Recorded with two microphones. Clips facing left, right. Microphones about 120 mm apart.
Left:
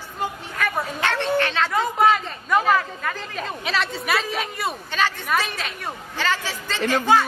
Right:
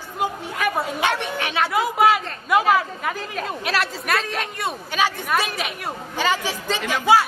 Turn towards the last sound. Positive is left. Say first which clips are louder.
# right 1 dB
turn(degrees=-10)  # may be behind; listen again after turning